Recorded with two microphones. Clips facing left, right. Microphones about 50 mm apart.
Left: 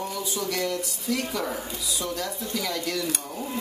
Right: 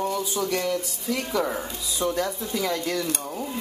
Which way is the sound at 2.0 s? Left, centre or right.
Right.